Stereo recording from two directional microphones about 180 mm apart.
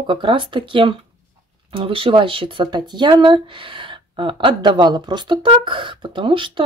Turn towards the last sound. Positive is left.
turn(degrees=-30)  # may be behind; listen again after turning